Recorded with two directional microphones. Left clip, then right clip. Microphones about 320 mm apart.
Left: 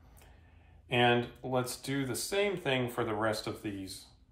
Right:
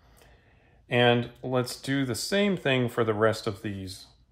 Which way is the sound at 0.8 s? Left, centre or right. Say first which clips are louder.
Right 5 dB; right.